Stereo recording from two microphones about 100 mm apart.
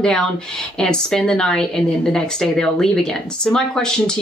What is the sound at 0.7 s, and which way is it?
Speech, 10° left (ahead or behind).